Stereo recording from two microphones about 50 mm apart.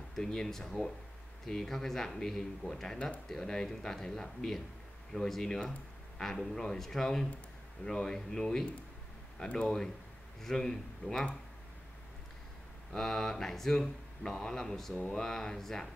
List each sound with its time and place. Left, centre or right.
0.1 s speech: centre
9.4 s speech: left
10.4 s speech: centre
12.9 s speech: centre
15.0 s speech: centre